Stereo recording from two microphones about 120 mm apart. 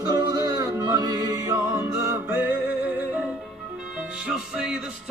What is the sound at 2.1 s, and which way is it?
Music, 15° right (ahead or behind).